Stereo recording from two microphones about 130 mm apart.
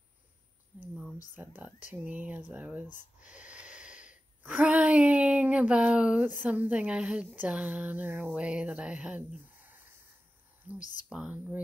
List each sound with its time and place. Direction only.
1.1 s a woman's voice: 15° right (ahead or behind)
3.2 s a sound: 10° right (ahead or behind)
6.4 s a woman's voice: 10° right (ahead or behind)
10.8 s speech: 75° left (ahead or behind)
11.1 s a woman's voice: 10° right (ahead or behind)